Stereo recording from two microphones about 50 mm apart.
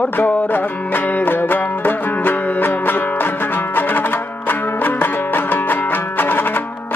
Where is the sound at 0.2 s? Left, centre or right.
Left.